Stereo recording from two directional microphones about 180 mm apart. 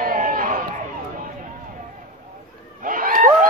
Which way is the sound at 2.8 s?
50° right (ahead or behind).